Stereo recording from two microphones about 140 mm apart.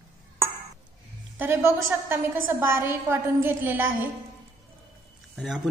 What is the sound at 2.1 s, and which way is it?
A woman's voice, 15° right (ahead or behind).